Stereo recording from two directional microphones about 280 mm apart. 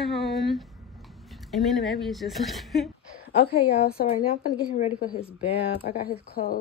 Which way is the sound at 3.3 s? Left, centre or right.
Left.